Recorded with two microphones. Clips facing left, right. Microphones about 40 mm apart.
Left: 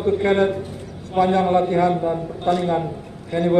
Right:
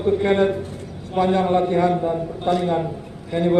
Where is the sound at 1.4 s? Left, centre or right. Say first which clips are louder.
Left 1 dB; centre.